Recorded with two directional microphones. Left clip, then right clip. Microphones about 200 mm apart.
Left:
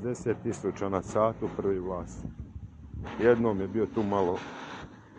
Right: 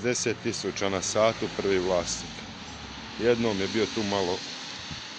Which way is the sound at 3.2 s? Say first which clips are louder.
Left 1 dB; 25° right (ahead or behind).